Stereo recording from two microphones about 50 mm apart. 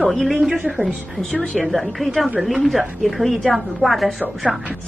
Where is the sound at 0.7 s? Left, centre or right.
Right.